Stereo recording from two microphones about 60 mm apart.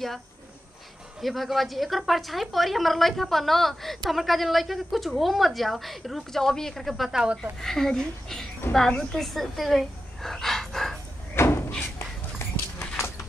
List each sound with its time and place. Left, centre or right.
1.2 s a woman's voice: centre
7.6 s a woman's voice: centre
11.3 s door: left
12.7 s horse: left